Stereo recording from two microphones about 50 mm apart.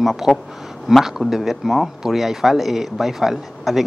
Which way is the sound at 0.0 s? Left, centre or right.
Centre.